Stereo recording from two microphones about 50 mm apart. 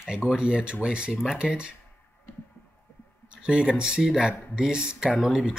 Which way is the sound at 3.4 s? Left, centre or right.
Centre.